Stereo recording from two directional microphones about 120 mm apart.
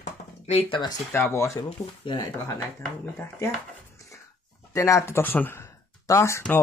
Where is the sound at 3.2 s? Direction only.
20° left (ahead or behind).